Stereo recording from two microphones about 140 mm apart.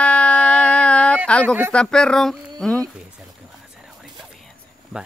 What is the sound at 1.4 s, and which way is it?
Speech, 15° right (ahead or behind).